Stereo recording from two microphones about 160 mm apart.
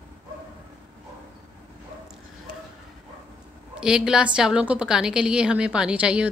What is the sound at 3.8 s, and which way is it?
A woman's voice, 5° right (ahead or behind).